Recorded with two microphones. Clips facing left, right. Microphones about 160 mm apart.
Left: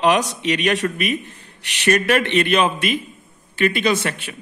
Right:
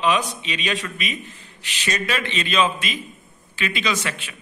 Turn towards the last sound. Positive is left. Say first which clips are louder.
# left 6 dB
turn(degrees=55)  # may be behind; listen again after turning